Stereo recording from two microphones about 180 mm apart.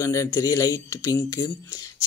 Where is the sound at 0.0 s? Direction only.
15° left (ahead or behind).